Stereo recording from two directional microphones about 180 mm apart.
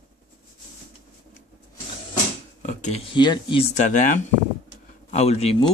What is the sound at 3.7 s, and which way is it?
Speech, 45° left (ahead or behind).